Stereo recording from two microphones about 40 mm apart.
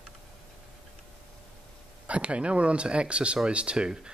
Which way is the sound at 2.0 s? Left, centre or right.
Right.